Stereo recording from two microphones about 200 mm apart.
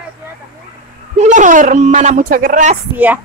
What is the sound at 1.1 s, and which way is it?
Speech, 35° right (ahead or behind).